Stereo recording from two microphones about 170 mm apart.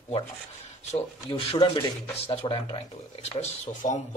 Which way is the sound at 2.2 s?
35° left (ahead or behind).